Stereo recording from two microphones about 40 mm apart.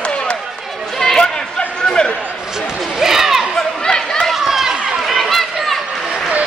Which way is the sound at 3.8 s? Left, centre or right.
Centre.